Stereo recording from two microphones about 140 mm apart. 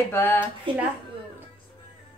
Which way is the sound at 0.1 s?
15° left (ahead or behind).